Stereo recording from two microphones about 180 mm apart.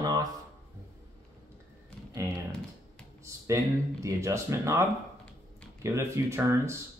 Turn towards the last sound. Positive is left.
turn(degrees=-15)  # may be behind; listen again after turning